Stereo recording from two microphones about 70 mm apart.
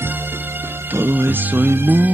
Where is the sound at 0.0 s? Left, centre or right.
Right.